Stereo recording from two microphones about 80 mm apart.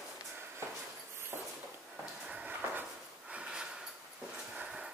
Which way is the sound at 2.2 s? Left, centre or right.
Centre.